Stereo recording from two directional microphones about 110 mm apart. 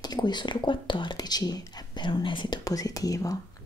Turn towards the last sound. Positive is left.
turn(degrees=30)  # may be behind; listen again after turning